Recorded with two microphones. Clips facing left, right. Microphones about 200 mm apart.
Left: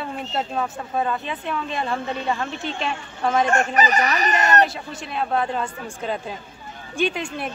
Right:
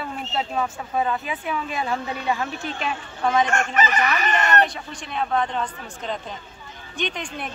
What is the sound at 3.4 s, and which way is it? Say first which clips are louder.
Speech: left 3 dB; 35° left (ahead or behind).